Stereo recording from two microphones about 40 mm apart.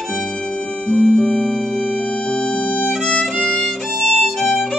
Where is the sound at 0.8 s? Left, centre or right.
Left.